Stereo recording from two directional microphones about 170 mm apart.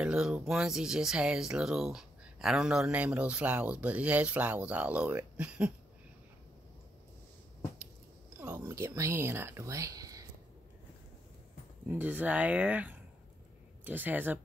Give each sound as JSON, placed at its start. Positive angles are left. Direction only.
{"t": 0.0, "sound": "speech", "side_deg": -5}
{"t": 8.4, "sound": "speech", "side_deg": -15}
{"t": 11.9, "sound": "speech", "side_deg": -10}